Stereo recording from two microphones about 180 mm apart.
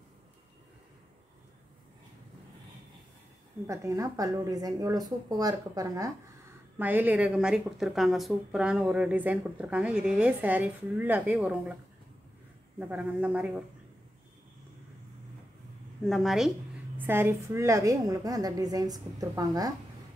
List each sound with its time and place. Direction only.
3.6 s a woman's voice: 15° right (ahead or behind)
12.7 s a woman's voice: 10° right (ahead or behind)
16.0 s speech: centre (ahead or behind)
17.0 s a woman's voice: 10° right (ahead or behind)